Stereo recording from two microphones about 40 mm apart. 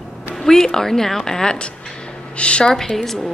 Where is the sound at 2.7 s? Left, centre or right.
Centre.